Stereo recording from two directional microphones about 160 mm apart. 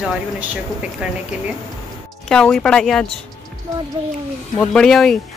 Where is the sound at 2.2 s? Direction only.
5° left (ahead or behind).